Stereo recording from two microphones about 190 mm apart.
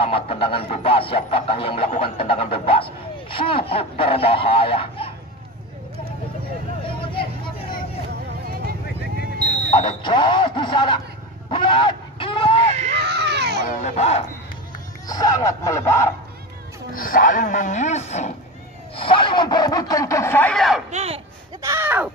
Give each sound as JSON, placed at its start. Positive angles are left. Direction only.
{"t": 0.0, "sound": "speech", "side_deg": 30}
{"t": 6.9, "sound": "vehicle", "side_deg": 25}
{"t": 10.0, "sound": "speech", "side_deg": 25}
{"t": 11.5, "sound": "a sound", "side_deg": 25}
{"t": 12.9, "sound": "baby cry", "side_deg": -60}
{"t": 13.7, "sound": "speech", "side_deg": 35}
{"t": 15.0, "sound": "speech", "side_deg": 20}
{"t": 16.9, "sound": "speech", "side_deg": 50}
{"t": 20.9, "sound": "speech", "side_deg": -35}
{"t": 21.5, "sound": "speech", "side_deg": -15}